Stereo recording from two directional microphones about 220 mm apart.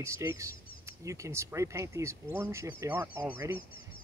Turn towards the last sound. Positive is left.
turn(degrees=-10)  # may be behind; listen again after turning